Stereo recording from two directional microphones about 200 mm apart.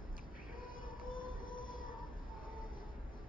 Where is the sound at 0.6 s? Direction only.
45° left (ahead or behind).